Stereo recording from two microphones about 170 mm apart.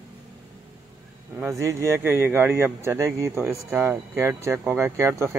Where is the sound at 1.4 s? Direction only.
15° right (ahead or behind).